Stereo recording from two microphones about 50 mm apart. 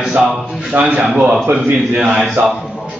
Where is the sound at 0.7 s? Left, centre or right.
Right.